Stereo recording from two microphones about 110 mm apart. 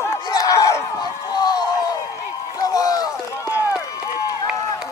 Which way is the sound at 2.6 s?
35° left (ahead or behind).